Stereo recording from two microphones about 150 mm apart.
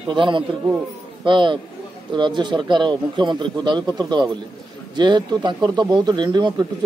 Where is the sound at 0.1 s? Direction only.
30° right (ahead or behind).